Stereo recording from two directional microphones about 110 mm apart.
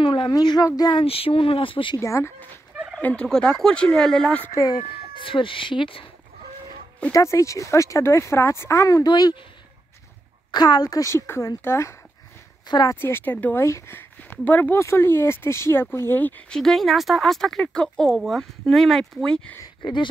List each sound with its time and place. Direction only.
0.0 s a sound: 45° left (ahead or behind)
0.3 s a woman's voice: 35° left (ahead or behind)
0.9 s speech: 60° left (ahead or behind)
2.0 s speech: 25° left (ahead or behind)
3.0 s speech: 10° left (ahead or behind)
4.7 s speech: 55° left (ahead or behind)
7.1 s speech: 30° left (ahead or behind)
10.5 s speech: 40° left (ahead or behind)
12.6 s speech: 40° left (ahead or behind)
13.0 s speech: 20° left (ahead or behind)
19.8 s speech: 45° left (ahead or behind)